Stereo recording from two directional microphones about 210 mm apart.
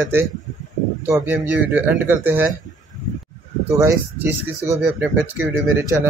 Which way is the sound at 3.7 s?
15° right (ahead or behind).